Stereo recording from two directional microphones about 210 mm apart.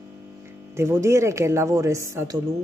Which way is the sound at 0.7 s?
10° right (ahead or behind).